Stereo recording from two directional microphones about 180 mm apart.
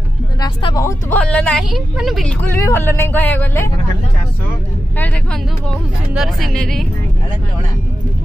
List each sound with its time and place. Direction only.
0.4 s speech: 25° left (ahead or behind)
0.8 s a woman's voice: 10° left (ahead or behind)
2.4 s speech: 15° left (ahead or behind)
4.9 s speech: 10° left (ahead or behind)
6.1 s a woman's voice: centre (ahead or behind)